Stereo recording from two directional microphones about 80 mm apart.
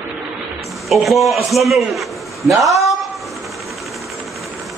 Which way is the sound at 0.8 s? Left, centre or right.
Centre.